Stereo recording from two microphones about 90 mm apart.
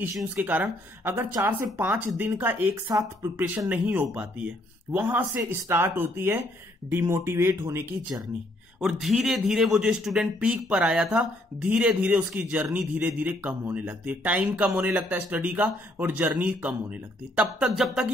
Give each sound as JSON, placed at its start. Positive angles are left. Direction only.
{"t": 0.5, "sound": "speech", "side_deg": -20}
{"t": 2.2, "sound": "speech", "side_deg": -30}
{"t": 3.3, "sound": "speech", "side_deg": -20}
{"t": 8.7, "sound": "speech", "side_deg": -5}